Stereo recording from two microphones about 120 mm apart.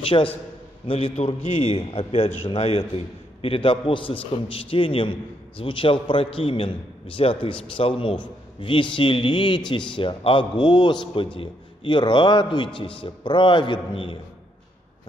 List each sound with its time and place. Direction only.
0.0 s a man's voice: 50° left (ahead or behind)